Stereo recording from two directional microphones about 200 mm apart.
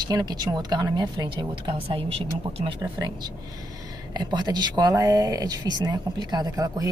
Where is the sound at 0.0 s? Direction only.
20° right (ahead or behind).